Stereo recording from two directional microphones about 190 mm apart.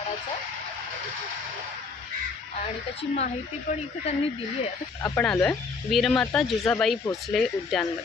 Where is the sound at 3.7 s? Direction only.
40° left (ahead or behind).